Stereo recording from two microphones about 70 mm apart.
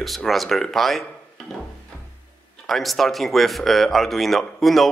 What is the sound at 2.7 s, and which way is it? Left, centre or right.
Speech, centre.